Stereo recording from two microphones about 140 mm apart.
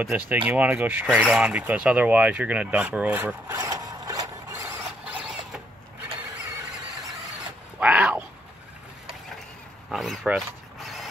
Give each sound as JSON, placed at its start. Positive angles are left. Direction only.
{"t": 0.1, "sound": "speech", "side_deg": -10}
{"t": 3.5, "sound": "zipper", "side_deg": -25}
{"t": 7.8, "sound": "a sound", "side_deg": -10}
{"t": 9.8, "sound": "speech", "side_deg": 0}
{"t": 10.3, "sound": "mechanisms", "side_deg": 0}